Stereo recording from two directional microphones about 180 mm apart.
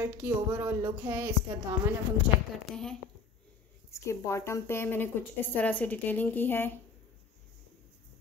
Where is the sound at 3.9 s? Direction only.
15° left (ahead or behind).